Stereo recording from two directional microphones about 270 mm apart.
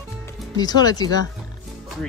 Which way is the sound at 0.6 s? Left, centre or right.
Centre.